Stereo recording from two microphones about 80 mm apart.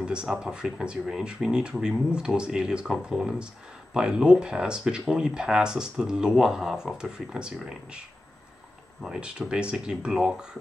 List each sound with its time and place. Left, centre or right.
0.0 s speech: centre
9.0 s speech: centre